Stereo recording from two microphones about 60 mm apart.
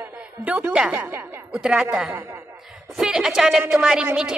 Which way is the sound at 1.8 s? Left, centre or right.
Centre.